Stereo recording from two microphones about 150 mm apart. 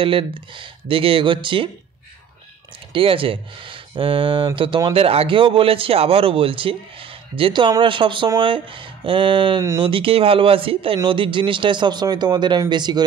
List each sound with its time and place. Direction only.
0.0 s a man's voice: 35° right (ahead or behind)
2.9 s a man's voice: 35° right (ahead or behind)